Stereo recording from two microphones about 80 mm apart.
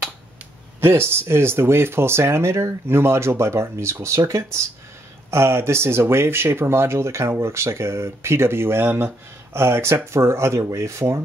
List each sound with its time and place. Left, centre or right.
0.7 s speech: right